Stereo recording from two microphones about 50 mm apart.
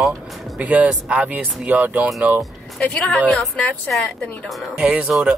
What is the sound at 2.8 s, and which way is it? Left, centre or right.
A woman's voice, left.